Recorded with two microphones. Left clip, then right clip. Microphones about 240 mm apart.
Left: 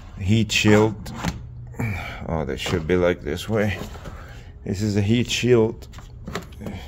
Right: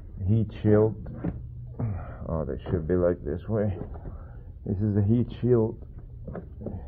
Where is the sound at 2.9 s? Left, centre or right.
Left.